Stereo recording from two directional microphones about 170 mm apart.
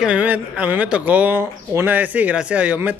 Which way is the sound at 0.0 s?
10° right (ahead or behind).